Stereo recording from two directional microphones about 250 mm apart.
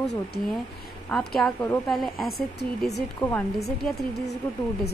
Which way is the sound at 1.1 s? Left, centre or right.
Centre.